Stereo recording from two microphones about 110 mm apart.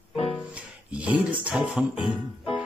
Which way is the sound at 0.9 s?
15° right (ahead or behind).